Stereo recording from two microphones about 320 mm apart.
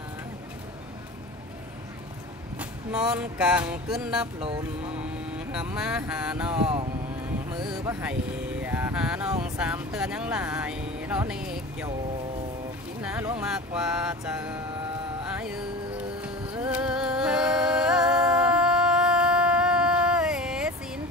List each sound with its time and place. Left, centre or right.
2.6 s music: centre
4.4 s music: centre
4.8 s speech: centre
7.7 s music: centre
9.4 s vehicle: centre
13.0 s music: centre